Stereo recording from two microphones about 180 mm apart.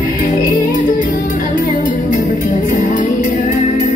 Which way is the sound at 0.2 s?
50° left (ahead or behind).